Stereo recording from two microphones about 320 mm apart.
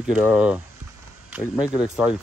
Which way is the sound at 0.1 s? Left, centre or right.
Centre.